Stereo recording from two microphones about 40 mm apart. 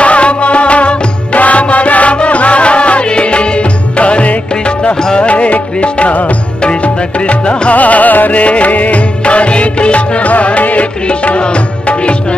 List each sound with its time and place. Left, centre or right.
0.0 s music: left
6.6 s music: left
7.7 s music: left
11.1 s music: left